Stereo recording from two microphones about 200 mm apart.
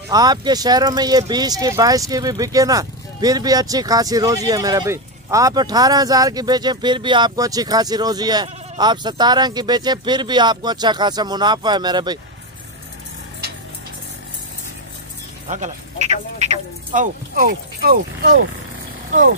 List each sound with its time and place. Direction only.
0.1 s speech: 20° right (ahead or behind)
15.4 s speech: 35° right (ahead or behind)